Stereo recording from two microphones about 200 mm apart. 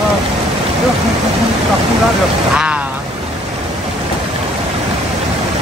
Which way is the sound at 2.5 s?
5° right (ahead or behind).